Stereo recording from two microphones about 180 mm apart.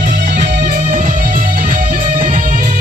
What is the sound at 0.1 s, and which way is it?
Music, 65° right (ahead or behind).